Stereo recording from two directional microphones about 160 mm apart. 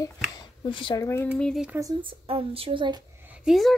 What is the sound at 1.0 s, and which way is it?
Speech, 15° left (ahead or behind).